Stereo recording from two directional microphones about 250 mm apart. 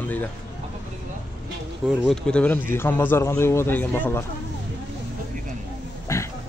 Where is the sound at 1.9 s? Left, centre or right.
Centre.